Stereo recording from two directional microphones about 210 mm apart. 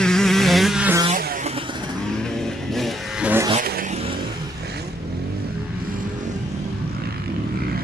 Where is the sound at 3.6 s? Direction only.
45° right (ahead or behind).